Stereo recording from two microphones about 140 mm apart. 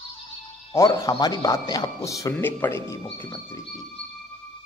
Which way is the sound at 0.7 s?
25° left (ahead or behind).